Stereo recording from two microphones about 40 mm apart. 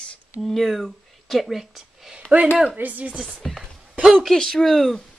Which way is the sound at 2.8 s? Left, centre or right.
Right.